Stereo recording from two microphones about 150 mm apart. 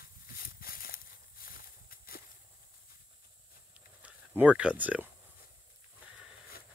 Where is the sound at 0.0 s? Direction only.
75° left (ahead or behind).